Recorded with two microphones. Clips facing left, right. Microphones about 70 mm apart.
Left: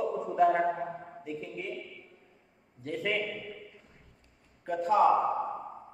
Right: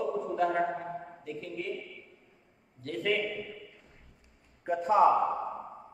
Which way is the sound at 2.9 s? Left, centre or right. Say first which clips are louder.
Right 1 dB; centre.